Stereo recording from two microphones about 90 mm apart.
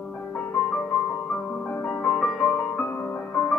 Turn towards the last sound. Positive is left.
turn(degrees=15)  # may be behind; listen again after turning